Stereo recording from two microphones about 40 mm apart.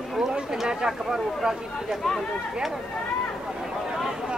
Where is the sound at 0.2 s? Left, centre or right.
Centre.